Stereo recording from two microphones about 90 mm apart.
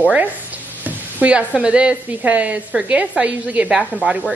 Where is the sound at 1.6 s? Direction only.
10° right (ahead or behind).